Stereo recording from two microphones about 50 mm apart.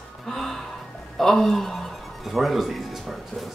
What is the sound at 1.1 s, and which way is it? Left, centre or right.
Speech, centre.